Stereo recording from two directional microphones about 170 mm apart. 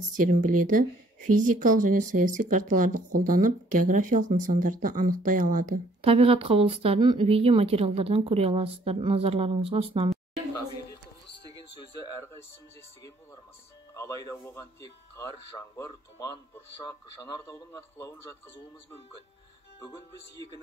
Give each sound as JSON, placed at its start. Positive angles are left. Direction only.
{"t": 0.1, "sound": "speech", "side_deg": -50}
{"t": 6.0, "sound": "speech", "side_deg": -35}
{"t": 13.9, "sound": "speech", "side_deg": 15}